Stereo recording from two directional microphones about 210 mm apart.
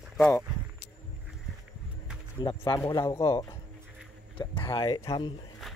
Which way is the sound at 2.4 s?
20° left (ahead or behind).